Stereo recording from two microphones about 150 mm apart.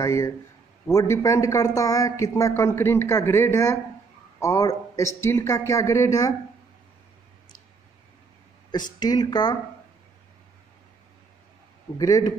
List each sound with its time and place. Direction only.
0.0 s speech: 20° left (ahead or behind)
9.0 s speech: 25° left (ahead or behind)
12.0 s speech: 25° left (ahead or behind)